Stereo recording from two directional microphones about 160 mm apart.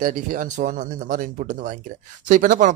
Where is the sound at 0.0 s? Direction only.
55° right (ahead or behind).